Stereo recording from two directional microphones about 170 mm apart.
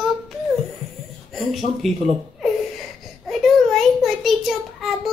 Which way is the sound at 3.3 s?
Centre (ahead or behind).